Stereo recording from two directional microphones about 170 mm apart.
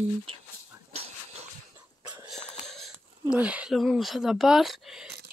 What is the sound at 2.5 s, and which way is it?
Speech, centre (ahead or behind).